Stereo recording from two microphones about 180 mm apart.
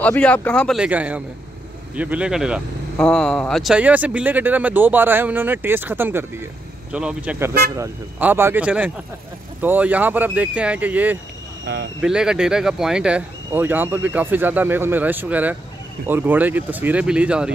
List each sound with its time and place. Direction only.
0.0 s speech: 5° left (ahead or behind)
0.7 s speech: 5° right (ahead or behind)
11.6 s speech: 90° right
12.0 s speech: 5° right (ahead or behind)